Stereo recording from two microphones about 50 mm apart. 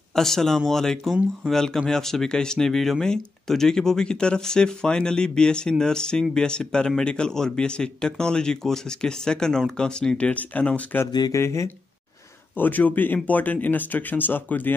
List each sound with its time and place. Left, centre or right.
0.1 s speech: centre
10.3 s speech: left
11.3 s speech: left
12.5 s speech: left